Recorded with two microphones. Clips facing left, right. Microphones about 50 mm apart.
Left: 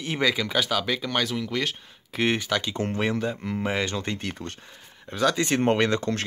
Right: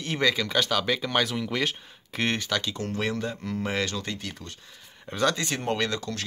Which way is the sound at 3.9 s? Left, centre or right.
Left.